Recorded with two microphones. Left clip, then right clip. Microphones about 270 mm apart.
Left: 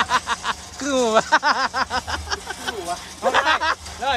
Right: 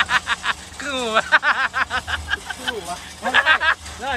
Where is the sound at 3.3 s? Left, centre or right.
Centre.